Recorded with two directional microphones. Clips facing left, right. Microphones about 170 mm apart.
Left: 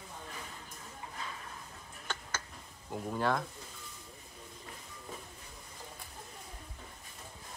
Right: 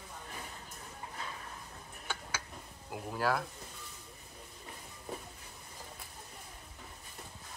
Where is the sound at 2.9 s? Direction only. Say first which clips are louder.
Left 1 dB; 5° right (ahead or behind).